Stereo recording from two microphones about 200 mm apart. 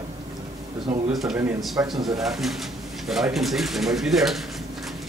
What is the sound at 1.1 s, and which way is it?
Speech, centre (ahead or behind).